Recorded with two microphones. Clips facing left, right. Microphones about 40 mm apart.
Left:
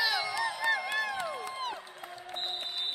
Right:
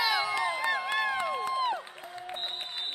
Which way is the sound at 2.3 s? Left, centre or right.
Right.